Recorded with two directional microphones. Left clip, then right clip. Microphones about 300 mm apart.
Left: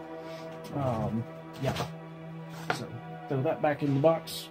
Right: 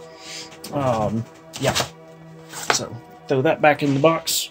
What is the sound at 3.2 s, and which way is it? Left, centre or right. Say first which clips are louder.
Speech: right 12 dB; right.